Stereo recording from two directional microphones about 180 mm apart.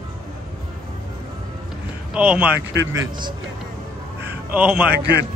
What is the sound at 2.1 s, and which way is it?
Speech, 5° right (ahead or behind).